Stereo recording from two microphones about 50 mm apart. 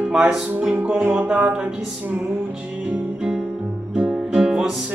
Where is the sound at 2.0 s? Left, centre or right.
Right.